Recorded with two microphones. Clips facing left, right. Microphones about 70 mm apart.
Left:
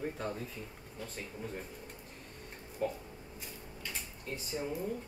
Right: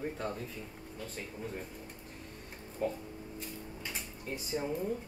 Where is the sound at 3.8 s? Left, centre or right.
Centre.